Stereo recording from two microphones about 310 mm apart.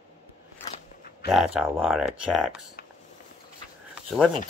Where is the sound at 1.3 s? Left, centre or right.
Centre.